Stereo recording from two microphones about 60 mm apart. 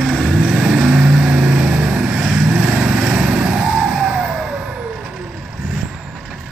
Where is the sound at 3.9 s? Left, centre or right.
Centre.